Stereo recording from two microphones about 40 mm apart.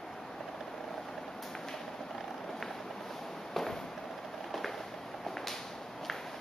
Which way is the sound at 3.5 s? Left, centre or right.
Centre.